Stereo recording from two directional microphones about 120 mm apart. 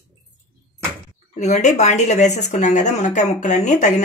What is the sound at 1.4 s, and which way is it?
Speech, 75° left (ahead or behind).